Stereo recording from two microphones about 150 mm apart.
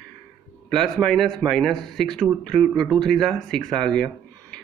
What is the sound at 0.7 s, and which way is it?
Speech, centre (ahead or behind).